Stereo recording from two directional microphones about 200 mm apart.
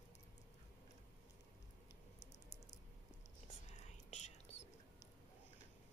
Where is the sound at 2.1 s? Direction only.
35° left (ahead or behind).